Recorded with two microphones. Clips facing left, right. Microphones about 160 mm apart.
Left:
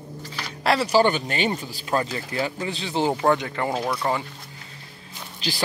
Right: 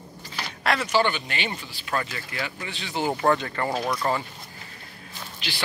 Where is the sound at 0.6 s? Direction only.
35° left (ahead or behind).